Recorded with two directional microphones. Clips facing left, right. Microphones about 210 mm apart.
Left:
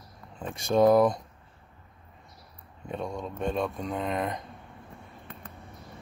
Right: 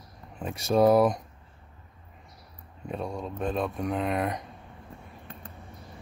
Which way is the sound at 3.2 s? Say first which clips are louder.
Even; centre (ahead or behind).